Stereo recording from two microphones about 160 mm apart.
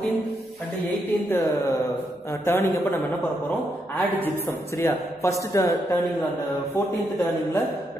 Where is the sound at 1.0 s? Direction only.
15° left (ahead or behind).